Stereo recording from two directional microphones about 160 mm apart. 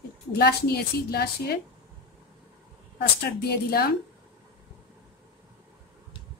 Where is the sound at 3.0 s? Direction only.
85° left.